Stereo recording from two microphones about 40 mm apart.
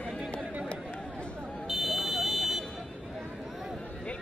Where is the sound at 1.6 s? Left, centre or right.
Centre.